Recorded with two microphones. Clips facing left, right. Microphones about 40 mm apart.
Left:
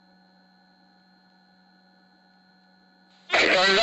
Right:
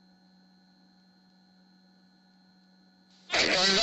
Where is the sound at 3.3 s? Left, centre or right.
Left.